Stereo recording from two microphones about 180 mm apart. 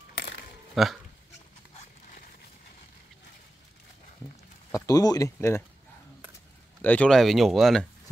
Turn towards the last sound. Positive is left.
turn(degrees=0)  # may be behind; listen again after turning